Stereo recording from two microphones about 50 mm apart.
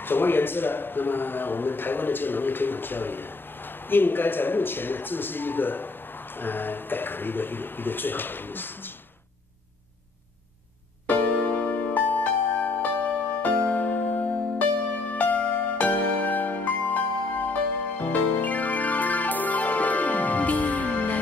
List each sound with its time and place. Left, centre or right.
0.0 s a man's voice: left
11.1 s music: left